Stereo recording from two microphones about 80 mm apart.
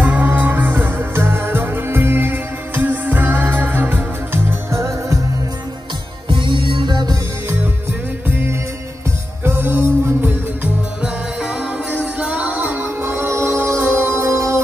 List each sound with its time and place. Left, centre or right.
0.0 s music: right
6.2 s music: right
8.3 s music: right
12.2 s music: centre; by 14.6 s right